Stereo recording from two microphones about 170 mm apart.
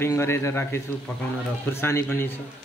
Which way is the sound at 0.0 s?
15° left (ahead or behind).